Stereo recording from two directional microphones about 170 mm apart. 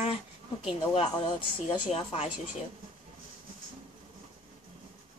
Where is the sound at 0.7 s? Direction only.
30° left (ahead or behind).